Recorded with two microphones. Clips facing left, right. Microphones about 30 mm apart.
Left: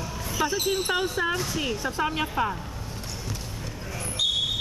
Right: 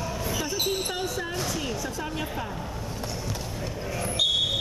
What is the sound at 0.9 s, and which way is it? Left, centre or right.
Speech, left.